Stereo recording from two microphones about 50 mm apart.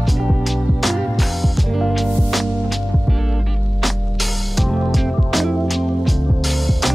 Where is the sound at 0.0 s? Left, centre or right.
Centre.